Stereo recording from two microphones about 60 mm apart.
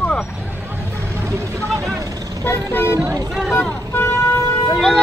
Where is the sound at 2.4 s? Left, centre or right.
Left.